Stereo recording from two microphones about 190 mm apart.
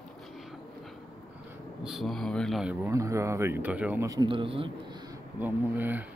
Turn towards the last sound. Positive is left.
turn(degrees=-10)  # may be behind; listen again after turning